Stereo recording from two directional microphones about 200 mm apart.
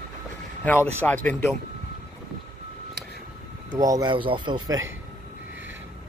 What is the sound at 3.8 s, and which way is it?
Speech, 20° right (ahead or behind).